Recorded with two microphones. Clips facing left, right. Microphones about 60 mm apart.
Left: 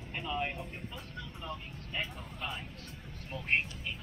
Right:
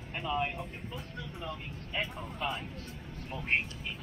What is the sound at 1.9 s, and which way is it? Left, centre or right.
Speech, right.